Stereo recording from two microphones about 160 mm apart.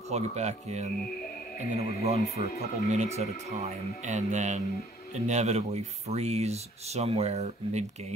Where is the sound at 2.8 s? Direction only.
45° right (ahead or behind).